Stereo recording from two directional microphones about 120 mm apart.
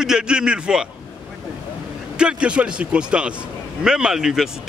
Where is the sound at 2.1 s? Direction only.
10° right (ahead or behind).